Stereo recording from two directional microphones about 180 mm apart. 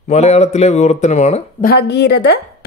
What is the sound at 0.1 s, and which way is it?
Speech, 35° left (ahead or behind).